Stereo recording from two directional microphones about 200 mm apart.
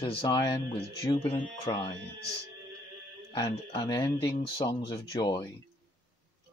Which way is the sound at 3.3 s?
20° left (ahead or behind).